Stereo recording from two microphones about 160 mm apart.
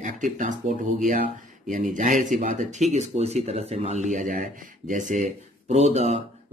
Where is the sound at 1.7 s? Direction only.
55° right (ahead or behind).